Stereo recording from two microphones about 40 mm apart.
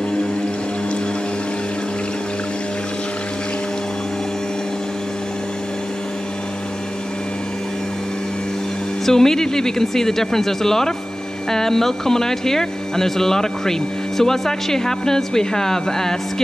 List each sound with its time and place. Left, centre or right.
9.0 s speech: centre